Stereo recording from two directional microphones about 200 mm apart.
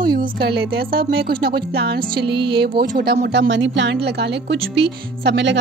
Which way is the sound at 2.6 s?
50° right (ahead or behind).